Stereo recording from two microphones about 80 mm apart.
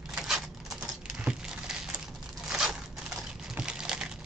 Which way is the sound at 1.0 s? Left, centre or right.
Centre.